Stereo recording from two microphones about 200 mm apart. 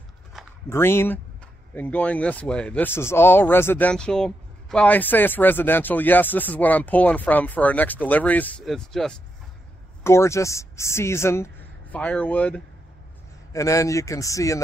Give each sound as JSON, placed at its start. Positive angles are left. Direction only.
{"t": 0.3, "sound": "a sound", "side_deg": 0}
{"t": 0.7, "sound": "speech", "side_deg": 10}
{"t": 10.0, "sound": "speech", "side_deg": 15}